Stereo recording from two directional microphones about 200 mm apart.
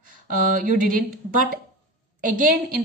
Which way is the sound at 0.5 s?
45° right (ahead or behind).